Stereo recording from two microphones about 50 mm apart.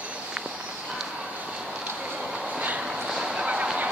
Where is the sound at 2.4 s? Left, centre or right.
Right.